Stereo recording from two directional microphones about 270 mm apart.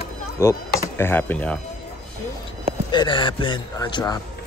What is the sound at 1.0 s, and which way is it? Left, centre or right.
Speech, centre.